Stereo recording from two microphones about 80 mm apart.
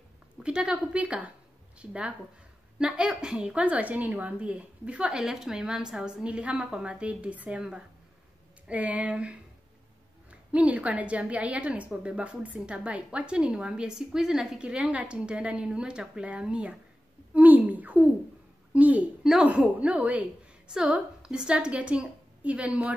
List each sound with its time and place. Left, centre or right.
0.4 s a woman's voice: centre
10.5 s a woman's voice: centre
17.3 s a sound: right
18.7 s a woman's voice: centre